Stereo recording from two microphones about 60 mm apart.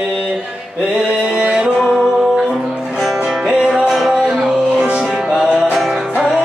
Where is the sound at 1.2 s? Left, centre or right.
Centre.